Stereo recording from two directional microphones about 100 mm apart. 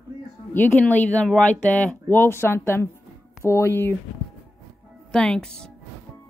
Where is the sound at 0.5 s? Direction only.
20° left (ahead or behind).